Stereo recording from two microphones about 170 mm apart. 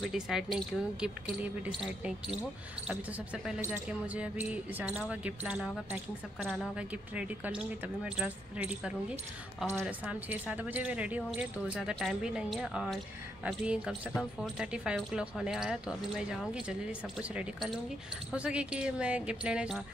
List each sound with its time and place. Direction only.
0.0 s speech: 5° right (ahead or behind)
3.4 s speech: 10° right (ahead or behind)